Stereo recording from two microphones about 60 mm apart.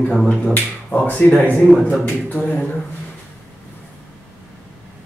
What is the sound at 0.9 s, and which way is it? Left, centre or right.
Speech, left.